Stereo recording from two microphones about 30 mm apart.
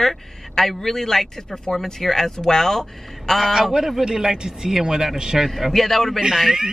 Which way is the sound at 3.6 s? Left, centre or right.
Centre.